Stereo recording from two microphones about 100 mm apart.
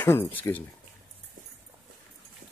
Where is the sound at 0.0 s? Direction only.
25° left (ahead or behind).